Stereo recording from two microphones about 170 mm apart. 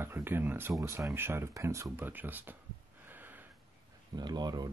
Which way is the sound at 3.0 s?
10° right (ahead or behind).